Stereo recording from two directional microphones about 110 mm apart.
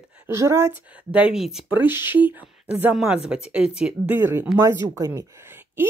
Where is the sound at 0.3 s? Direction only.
25° right (ahead or behind).